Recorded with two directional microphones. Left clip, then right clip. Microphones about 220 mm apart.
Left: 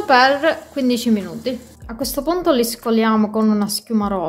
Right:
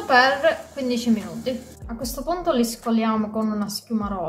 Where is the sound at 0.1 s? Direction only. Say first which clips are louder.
Left 3 dB; 45° left (ahead or behind).